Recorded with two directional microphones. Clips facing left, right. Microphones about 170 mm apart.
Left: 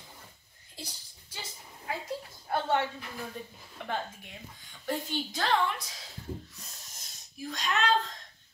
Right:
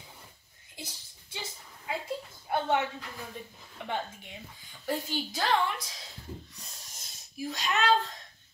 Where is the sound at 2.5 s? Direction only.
15° right (ahead or behind).